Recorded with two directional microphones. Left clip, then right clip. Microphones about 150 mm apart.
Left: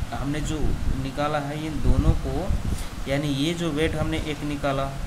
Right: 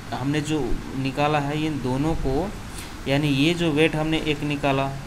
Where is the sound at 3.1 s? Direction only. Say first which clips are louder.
Right 4 dB; 10° right (ahead or behind).